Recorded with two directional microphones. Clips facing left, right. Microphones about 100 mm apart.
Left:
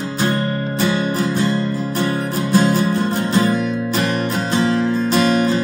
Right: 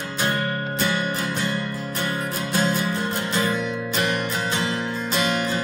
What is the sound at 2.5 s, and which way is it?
Music, 40° left (ahead or behind).